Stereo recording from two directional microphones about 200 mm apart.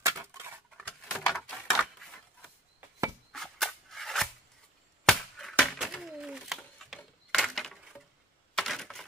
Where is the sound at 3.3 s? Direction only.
Centre (ahead or behind).